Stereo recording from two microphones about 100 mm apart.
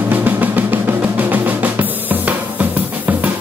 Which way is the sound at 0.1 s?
20° right (ahead or behind).